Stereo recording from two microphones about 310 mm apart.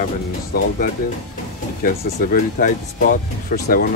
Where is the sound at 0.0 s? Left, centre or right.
Left.